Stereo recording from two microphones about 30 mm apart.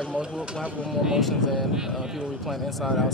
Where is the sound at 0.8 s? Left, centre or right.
Centre.